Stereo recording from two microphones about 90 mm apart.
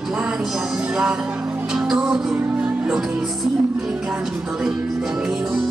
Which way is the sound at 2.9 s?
5° right (ahead or behind).